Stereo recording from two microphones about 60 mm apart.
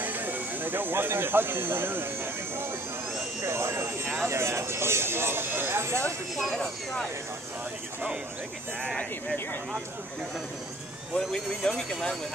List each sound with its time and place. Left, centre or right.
0.0 s speech: right
3.4 s speech: right
6.5 s speech: centre
8.8 s speech: centre
11.1 s speech: centre